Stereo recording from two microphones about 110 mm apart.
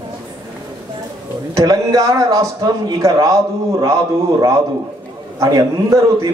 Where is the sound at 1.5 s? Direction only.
35° right (ahead or behind).